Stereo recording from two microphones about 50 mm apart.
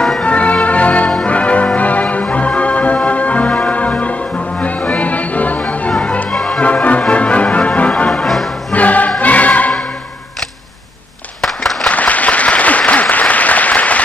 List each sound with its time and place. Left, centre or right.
0.2 s music: left
6.3 s music: centre
6.6 s music: left
8.1 s music: centre
8.7 s music: left
11.4 s applause: centre
11.8 s applause: left